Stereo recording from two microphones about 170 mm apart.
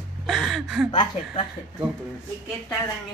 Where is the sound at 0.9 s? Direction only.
25° left (ahead or behind).